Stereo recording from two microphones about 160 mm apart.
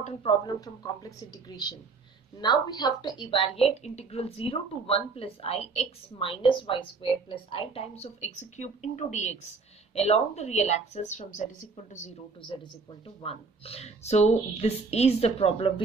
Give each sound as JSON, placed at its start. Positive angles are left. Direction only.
{"t": 0.0, "sound": "speech", "side_deg": 40}
{"t": 0.5, "sound": "a woman's voice", "side_deg": 25}
{"t": 13.2, "sound": "a woman's voice", "side_deg": 35}